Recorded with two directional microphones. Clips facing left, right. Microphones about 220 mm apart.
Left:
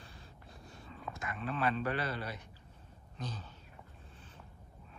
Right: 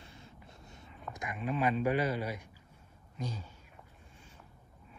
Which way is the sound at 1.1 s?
15° right (ahead or behind).